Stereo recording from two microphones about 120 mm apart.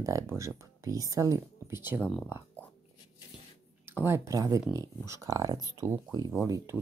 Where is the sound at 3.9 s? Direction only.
20° right (ahead or behind).